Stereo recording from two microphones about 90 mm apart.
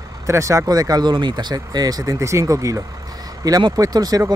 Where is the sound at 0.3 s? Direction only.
35° right (ahead or behind).